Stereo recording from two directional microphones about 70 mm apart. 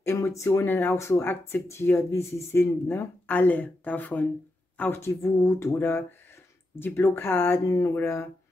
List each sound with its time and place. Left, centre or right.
0.1 s speech: left
1.2 s speech: left
3.3 s speech: left
5.2 s speech: left
5.8 s speech: left
7.6 s speech: left
7.9 s speech: left